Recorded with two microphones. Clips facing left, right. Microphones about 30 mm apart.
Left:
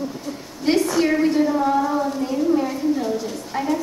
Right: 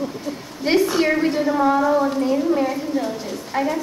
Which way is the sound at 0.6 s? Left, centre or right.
Centre.